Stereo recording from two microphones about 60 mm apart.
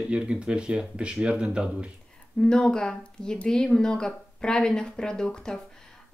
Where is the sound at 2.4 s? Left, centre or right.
Centre.